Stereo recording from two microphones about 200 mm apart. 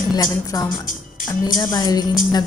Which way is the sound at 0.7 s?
45° left (ahead or behind).